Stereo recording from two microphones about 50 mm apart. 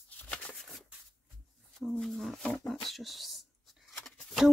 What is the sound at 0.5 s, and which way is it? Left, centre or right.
Shuffling cards, centre.